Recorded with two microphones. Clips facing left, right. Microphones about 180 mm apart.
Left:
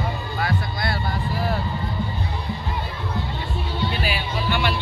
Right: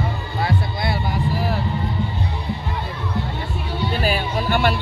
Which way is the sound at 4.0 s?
45° right (ahead or behind).